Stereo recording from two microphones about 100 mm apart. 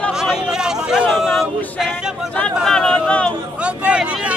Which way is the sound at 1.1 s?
Centre (ahead or behind).